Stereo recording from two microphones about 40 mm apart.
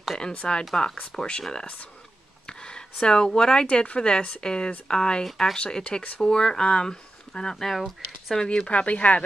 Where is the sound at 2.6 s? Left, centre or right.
Left.